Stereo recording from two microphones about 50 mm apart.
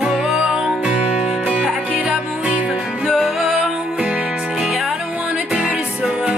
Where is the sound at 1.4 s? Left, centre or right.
Right.